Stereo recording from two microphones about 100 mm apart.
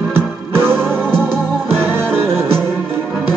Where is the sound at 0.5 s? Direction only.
20° right (ahead or behind).